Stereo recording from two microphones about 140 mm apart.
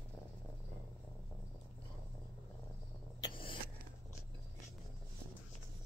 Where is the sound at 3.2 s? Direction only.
40° left (ahead or behind).